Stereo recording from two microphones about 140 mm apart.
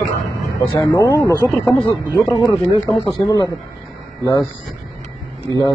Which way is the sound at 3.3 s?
25° left (ahead or behind).